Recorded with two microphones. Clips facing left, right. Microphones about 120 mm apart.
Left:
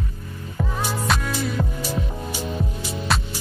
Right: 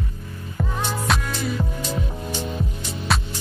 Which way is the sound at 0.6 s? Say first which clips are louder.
Even; 5° left (ahead or behind).